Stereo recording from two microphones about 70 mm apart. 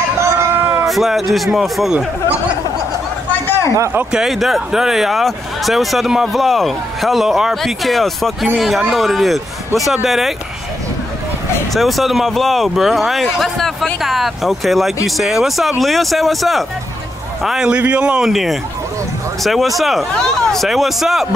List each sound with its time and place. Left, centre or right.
0.2 s a sound: right
0.8 s speech: centre
4.1 s speech: centre
11.7 s a man's voice: centre